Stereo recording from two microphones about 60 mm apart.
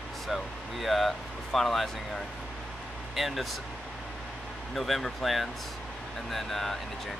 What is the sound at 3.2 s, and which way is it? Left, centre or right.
Speech, centre.